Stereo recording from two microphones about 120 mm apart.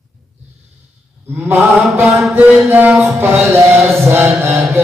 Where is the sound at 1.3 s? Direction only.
15° right (ahead or behind).